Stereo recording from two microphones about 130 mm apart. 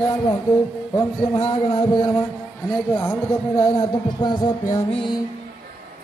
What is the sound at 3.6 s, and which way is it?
Speech, 40° left (ahead or behind).